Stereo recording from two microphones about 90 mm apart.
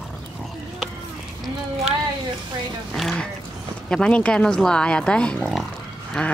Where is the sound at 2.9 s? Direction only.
Centre (ahead or behind).